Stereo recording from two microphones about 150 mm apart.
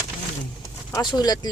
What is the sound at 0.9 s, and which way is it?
Speech, 25° left (ahead or behind).